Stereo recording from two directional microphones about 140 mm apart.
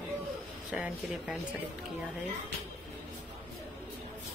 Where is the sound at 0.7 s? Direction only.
5° right (ahead or behind).